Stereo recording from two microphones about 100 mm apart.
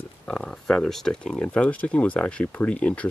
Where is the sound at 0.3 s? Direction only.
10° left (ahead or behind).